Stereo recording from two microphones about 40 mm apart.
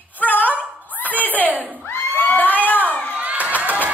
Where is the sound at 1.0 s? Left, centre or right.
Left.